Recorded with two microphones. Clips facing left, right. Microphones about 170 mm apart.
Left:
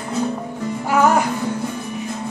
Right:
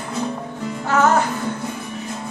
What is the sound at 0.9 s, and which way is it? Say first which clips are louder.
Music: left 1 dB; 10° left (ahead or behind).